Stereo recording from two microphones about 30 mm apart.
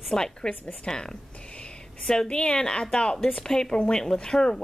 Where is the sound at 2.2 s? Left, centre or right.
Left.